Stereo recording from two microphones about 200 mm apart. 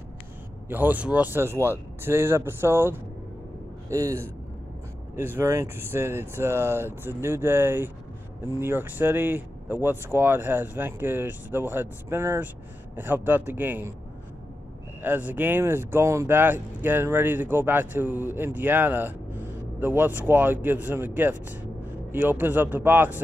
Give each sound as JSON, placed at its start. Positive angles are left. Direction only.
{"t": 0.7, "sound": "speech", "side_deg": -10}
{"t": 15.0, "sound": "speech", "side_deg": -10}